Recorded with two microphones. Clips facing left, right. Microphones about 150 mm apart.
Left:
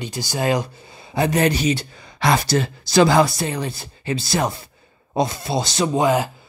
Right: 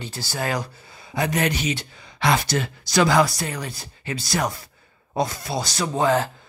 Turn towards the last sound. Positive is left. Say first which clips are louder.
# left 3 dB
turn(degrees=10)  # may be behind; listen again after turning